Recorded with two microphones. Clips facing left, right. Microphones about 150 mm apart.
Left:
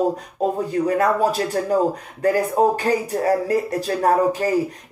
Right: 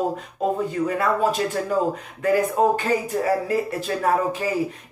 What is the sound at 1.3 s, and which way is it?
Speech, 35° left (ahead or behind).